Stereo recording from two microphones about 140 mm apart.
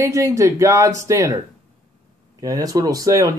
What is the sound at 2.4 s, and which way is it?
Speech, 25° right (ahead or behind).